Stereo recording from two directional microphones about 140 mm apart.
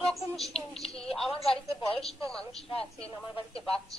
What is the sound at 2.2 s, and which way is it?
Speech, 5° left (ahead or behind).